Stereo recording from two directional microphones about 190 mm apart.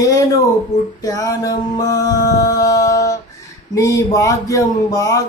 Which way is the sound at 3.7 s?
15° left (ahead or behind).